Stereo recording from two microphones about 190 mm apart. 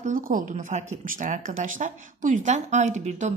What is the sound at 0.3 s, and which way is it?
A woman's voice, 45° right (ahead or behind).